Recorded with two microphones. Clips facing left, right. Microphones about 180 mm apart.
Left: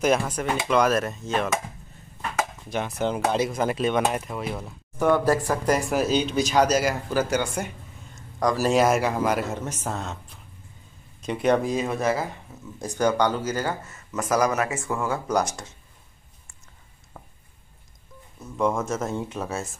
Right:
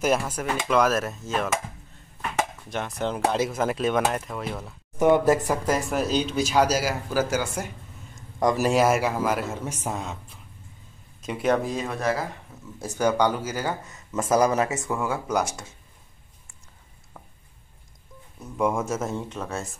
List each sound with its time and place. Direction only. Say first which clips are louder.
0.0 s speech: left 2 dB; 5° right (ahead or behind)
2.7 s speech: left 5 dB; centre (ahead or behind)
4.9 s speech: right 2 dB; 20° right (ahead or behind)
5.7 s speech: left 3 dB; centre (ahead or behind)
8.4 s speech: right 1 dB; 25° right (ahead or behind)
8.6 s speech: left 2 dB; 5° right (ahead or behind)
9.7 s speech: even; 10° right (ahead or behind)
11.2 s speech: left 2 dB; centre (ahead or behind)
14.1 s speech: right 2 dB; 25° right (ahead or behind); by 15.4 s 5° right (ahead or behind)
18.4 s speech: even; 10° right (ahead or behind); by 19.7 s 5° left (ahead or behind)